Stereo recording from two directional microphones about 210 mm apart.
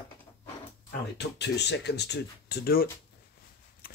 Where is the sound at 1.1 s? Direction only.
55° left (ahead or behind).